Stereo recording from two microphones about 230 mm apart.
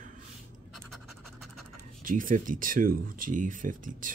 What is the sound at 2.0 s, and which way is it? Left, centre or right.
Speech, right.